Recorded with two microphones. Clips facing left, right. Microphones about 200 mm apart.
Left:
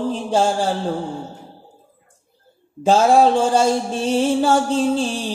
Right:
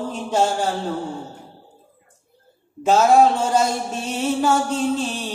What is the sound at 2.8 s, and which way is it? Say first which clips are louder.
Mantra: left 1 dB; 30° left (ahead or behind).